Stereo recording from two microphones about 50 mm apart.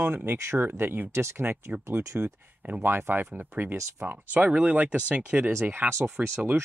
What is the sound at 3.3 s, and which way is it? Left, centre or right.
Speech, right.